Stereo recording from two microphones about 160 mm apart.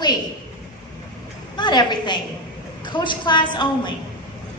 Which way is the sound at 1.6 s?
25° left (ahead or behind).